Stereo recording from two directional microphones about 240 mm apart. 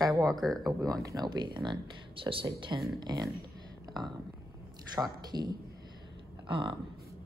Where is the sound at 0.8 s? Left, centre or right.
Centre.